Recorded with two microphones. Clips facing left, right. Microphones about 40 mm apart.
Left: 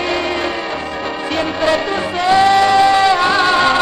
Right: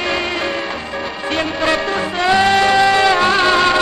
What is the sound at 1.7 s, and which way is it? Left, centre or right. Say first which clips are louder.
Radio: left 1 dB; right.